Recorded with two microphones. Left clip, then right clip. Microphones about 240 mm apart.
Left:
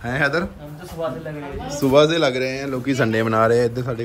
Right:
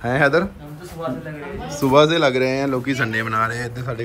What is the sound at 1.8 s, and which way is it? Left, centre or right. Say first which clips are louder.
Speech: right 1 dB; centre.